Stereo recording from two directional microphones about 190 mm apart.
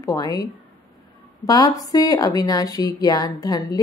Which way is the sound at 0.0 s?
20° left (ahead or behind).